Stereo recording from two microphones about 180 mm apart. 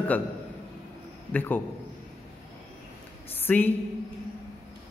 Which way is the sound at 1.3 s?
10° left (ahead or behind).